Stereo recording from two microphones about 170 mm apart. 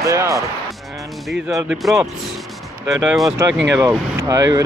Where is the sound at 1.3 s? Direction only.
5° right (ahead or behind).